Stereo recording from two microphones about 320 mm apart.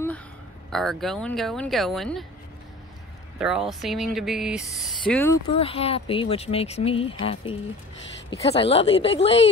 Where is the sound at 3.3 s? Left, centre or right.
Centre.